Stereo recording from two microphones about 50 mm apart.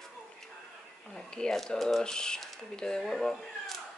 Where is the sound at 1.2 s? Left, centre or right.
Centre.